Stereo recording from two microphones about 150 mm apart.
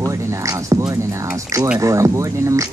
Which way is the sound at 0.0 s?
20° right (ahead or behind).